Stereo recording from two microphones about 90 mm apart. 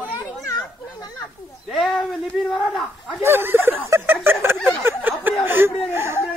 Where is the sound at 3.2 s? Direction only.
25° right (ahead or behind).